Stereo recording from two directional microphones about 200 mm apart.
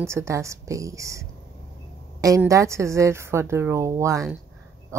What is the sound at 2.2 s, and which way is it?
Speech, 15° right (ahead or behind).